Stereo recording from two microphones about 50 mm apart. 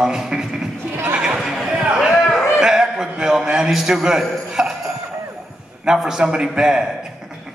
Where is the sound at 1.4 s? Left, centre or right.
Centre.